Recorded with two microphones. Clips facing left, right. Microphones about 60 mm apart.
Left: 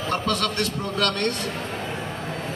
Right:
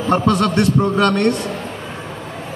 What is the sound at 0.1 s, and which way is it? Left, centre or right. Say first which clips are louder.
A man's voice: right 10 dB; right.